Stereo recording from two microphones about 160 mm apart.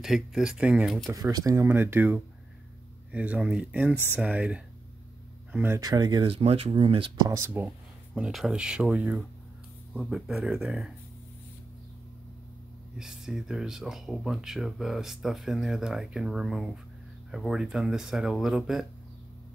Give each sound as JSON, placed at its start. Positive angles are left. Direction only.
{"t": 0.0, "sound": "speech", "side_deg": 0}
{"t": 1.1, "sound": "speech", "side_deg": -20}
{"t": 3.9, "sound": "speech", "side_deg": 15}
{"t": 4.2, "sound": "speech", "side_deg": -5}
{"t": 5.8, "sound": "speech", "side_deg": -25}
{"t": 7.2, "sound": "speech", "side_deg": -15}
{"t": 8.1, "sound": "speech", "side_deg": 0}
{"t": 12.9, "sound": "speech", "side_deg": -5}